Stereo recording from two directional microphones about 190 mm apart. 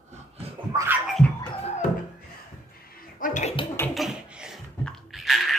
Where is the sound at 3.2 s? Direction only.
40° left (ahead or behind).